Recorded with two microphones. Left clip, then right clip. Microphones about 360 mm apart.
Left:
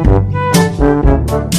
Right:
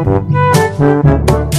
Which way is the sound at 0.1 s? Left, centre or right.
Centre.